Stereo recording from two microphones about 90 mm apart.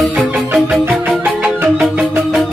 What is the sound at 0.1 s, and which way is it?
Music, 15° right (ahead or behind).